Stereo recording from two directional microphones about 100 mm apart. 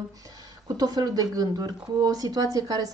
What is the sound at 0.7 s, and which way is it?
Speech, 40° right (ahead or behind).